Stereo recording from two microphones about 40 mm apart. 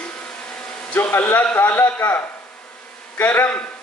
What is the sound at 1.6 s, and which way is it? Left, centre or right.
Speech, left.